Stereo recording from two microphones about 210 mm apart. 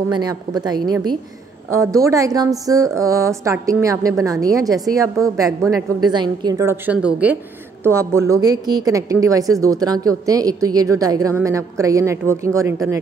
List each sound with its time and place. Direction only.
0.1 s a woman's voice: 20° right (ahead or behind)